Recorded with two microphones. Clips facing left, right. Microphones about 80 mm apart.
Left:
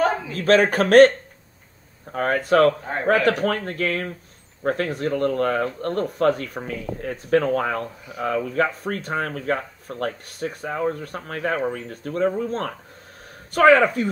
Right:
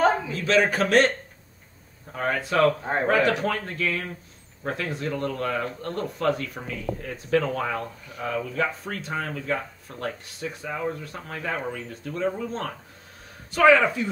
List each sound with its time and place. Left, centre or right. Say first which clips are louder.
0.3 s speech: left 4 dB; left
2.1 s speech: left 5 dB; left
2.8 s a man's voice: right 2 dB; right
3.1 s speech: left 4 dB; left